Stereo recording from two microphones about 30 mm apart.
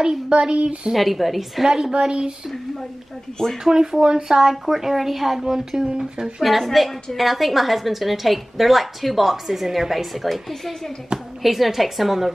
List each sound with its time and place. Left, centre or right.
0.3 s speech: right
0.9 s a woman's voice: centre
1.6 s a woman's voice: centre
1.9 s a woman's voice: right
3.6 s a woman's voice: centre
4.0 s a woman's voice: right
4.4 s a woman's voice: centre
5.4 s a woman's voice: centre
6.4 s a woman's voice: centre
11.1 s a woman's voice: right
11.4 s a woman's voice: centre